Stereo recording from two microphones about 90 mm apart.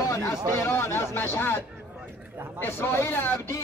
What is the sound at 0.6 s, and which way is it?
Speech, 30° left (ahead or behind).